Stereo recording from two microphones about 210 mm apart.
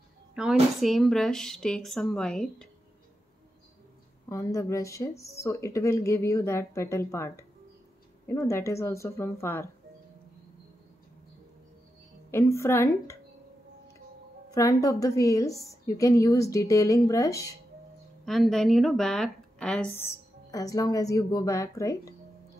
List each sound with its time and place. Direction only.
0.3 s a sound: 5° right (ahead or behind)
0.7 s a woman's voice: centre (ahead or behind)
4.3 s speech: 15° left (ahead or behind)
12.3 s speech: 15° left (ahead or behind)
14.5 s speech: 15° left (ahead or behind)
18.2 s a woman's voice: centre (ahead or behind)
20.5 s speech: 15° left (ahead or behind)